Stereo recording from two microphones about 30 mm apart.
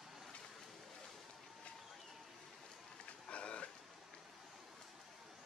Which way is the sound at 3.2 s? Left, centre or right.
Left.